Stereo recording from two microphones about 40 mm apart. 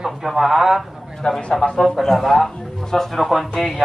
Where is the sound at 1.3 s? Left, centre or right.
Left.